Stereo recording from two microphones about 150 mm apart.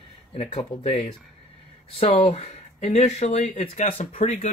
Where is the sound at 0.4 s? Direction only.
45° left (ahead or behind).